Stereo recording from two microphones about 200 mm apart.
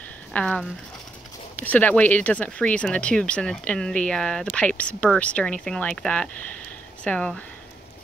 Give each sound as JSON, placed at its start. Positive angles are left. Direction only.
{"t": 0.3, "sound": "speech", "side_deg": 5}